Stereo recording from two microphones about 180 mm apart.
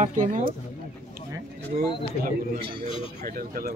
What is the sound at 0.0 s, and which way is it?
Speech, 45° right (ahead or behind).